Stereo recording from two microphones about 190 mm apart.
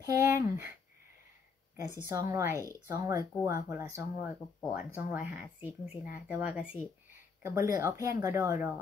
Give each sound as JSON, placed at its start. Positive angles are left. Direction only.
{"t": 0.0, "sound": "speech", "side_deg": -15}
{"t": 2.0, "sound": "a woman's voice", "side_deg": -15}
{"t": 7.4, "sound": "a woman's voice", "side_deg": -15}